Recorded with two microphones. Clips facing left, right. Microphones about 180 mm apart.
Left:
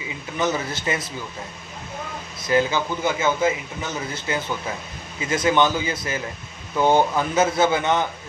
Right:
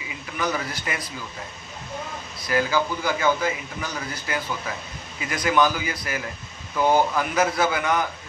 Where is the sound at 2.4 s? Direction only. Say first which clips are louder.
Left 2 dB; 25° left (ahead or behind).